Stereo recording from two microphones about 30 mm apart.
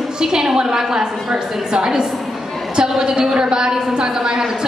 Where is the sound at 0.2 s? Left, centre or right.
Centre.